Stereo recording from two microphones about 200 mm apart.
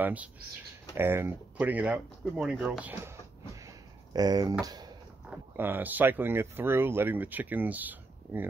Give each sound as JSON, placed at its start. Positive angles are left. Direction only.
{"t": 0.0, "sound": "speech", "side_deg": -5}
{"t": 3.6, "sound": "a sound", "side_deg": -20}
{"t": 5.3, "sound": "speech", "side_deg": -10}